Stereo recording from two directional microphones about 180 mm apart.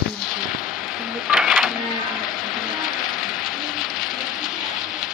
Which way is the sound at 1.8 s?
25° left (ahead or behind).